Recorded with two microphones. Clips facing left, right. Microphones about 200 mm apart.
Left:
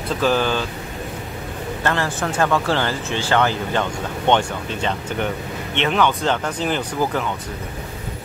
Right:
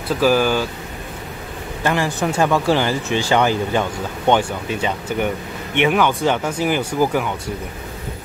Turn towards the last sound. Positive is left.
turn(degrees=-10)  # may be behind; listen again after turning